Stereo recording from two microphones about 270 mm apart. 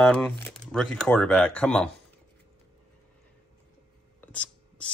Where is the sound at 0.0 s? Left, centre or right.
Centre.